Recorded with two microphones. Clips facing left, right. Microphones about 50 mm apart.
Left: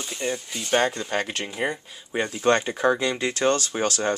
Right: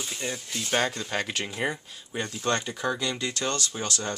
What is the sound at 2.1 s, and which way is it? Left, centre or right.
Speech, left.